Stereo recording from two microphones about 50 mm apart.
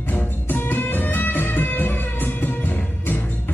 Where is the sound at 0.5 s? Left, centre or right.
Left.